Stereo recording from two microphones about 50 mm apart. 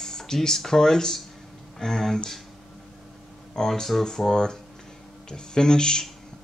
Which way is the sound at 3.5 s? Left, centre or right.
Centre.